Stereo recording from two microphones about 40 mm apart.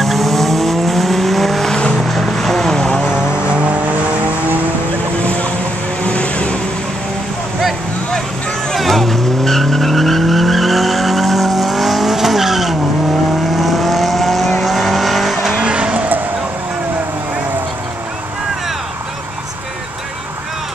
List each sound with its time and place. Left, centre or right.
0.0 s vehicle: centre
1.7 s vehicle: centre
2.0 s vehicle: centre
3.1 s vehicle: right
3.8 s vehicle: right
5.2 s vehicle: left
8.7 s vehicle: centre
15.6 s vehicle: right